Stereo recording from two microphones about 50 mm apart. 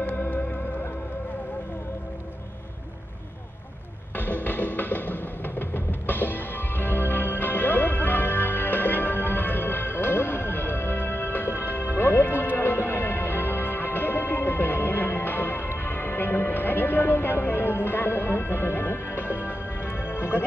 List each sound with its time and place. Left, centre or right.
0.0 s music: left
4.2 s music: left